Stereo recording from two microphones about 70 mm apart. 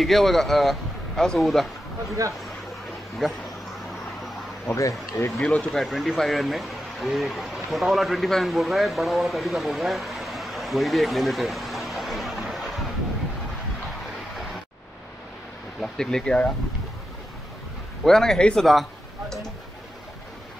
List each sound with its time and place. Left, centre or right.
0.0 s a man's voice: centre
2.2 s speech: right
4.7 s speech: left
5.4 s speech: centre
5.7 s speech: centre
15.8 s speech: centre
18.0 s speech: centre
18.7 s a sound: centre